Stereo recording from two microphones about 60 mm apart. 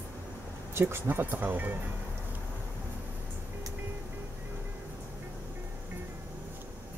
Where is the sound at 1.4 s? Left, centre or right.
Right.